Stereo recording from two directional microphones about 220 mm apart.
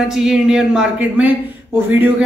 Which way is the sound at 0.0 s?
Centre (ahead or behind).